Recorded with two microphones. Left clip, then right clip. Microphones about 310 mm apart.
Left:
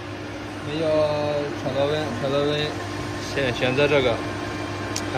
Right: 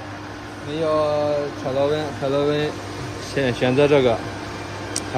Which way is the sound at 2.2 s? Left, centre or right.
Right.